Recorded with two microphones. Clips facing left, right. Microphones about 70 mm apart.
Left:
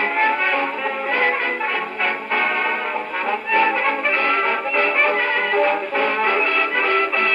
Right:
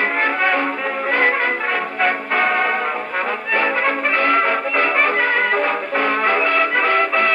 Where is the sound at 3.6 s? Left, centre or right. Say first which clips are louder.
Even; right.